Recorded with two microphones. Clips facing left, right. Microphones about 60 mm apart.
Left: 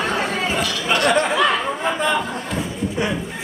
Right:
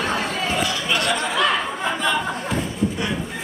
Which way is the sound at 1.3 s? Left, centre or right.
Centre.